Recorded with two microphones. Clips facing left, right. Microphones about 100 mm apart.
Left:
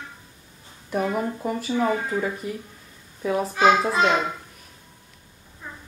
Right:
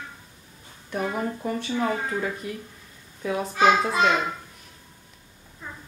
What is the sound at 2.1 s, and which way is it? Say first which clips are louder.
A child's voice: left 2 dB; centre (ahead or behind).